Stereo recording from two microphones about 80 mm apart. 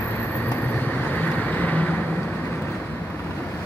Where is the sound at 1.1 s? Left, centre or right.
Left.